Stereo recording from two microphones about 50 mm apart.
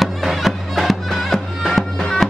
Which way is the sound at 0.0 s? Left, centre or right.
Centre.